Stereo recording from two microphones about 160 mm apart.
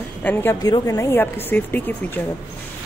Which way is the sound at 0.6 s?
25° left (ahead or behind).